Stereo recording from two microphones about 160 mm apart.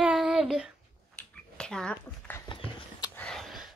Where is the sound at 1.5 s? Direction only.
5° left (ahead or behind).